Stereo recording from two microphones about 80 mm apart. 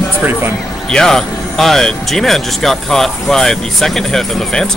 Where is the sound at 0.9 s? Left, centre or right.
Centre.